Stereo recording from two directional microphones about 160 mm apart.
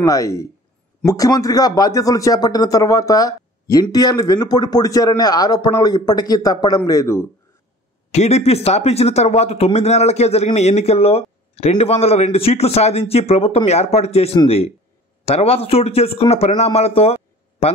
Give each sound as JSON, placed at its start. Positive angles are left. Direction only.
{"t": 0.0, "sound": "speech", "side_deg": 20}
{"t": 8.1, "sound": "speech", "side_deg": 40}